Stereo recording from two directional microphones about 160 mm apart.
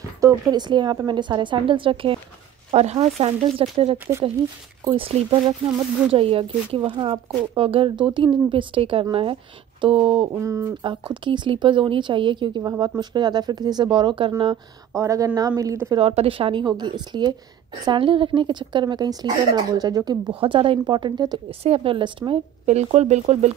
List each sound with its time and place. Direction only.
0.2 s a woman's voice: 25° right (ahead or behind)
10.2 s a woman's voice: 20° right (ahead or behind)
11.2 s a woman's voice: 30° right (ahead or behind)
16.0 s a woman's voice: 35° right (ahead or behind)
22.7 s speech: 45° right (ahead or behind)